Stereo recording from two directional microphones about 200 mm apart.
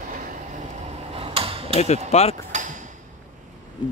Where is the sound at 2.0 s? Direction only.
30° left (ahead or behind).